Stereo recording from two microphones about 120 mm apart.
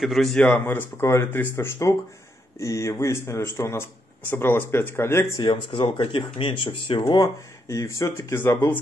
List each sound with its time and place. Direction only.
0.0 s speech: centre (ahead or behind); by 5.3 s 20° left (ahead or behind)
5.4 s speech: 40° left (ahead or behind); by 8.5 s 25° left (ahead or behind)